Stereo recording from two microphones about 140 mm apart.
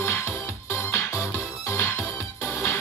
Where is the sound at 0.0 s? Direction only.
20° left (ahead or behind).